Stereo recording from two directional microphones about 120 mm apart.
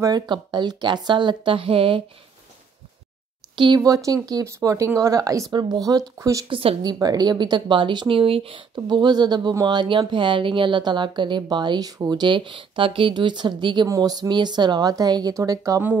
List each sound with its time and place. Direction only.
0.0 s speech: 35° right (ahead or behind)
3.5 s speech: 40° right (ahead or behind)
6.4 s a woman's voice: 50° right (ahead or behind)
6.8 s speech: 35° right (ahead or behind)
8.7 s speech: 35° right (ahead or behind)
13.8 s speech: 30° right (ahead or behind)